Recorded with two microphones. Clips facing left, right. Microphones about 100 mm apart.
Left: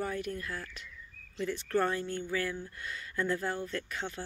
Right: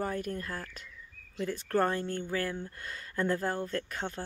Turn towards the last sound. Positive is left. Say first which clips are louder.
# right 2 dB
turn(degrees=-45)  # may be behind; listen again after turning